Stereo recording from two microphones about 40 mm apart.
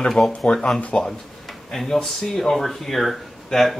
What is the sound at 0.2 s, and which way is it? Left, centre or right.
Speech, centre.